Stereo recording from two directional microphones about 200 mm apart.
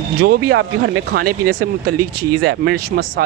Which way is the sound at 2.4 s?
50° right (ahead or behind).